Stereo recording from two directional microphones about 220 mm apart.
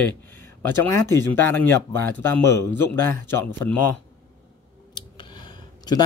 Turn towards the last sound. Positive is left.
turn(degrees=20)  # may be behind; listen again after turning